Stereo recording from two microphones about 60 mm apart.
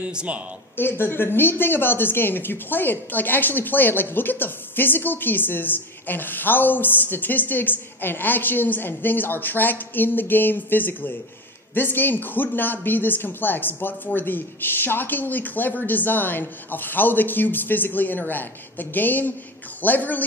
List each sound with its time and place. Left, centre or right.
0.1 s speech: centre
0.7 s speech: left